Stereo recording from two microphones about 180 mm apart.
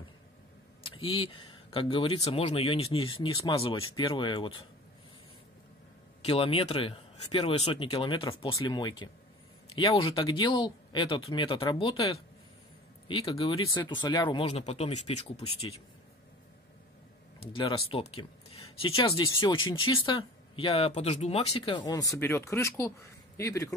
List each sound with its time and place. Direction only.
0.8 s speech: 30° left (ahead or behind)
6.2 s speech: 30° left (ahead or behind)
14.5 s speech: 35° left (ahead or behind)
17.4 s speech: 30° left (ahead or behind)